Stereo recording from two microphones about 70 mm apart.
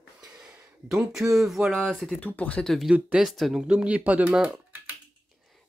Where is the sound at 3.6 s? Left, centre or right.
Centre.